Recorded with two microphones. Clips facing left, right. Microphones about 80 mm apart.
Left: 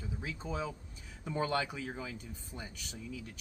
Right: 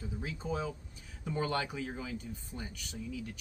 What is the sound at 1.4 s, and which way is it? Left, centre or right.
Speech, left.